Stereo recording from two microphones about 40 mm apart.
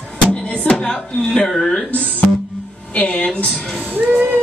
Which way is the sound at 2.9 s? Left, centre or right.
Left.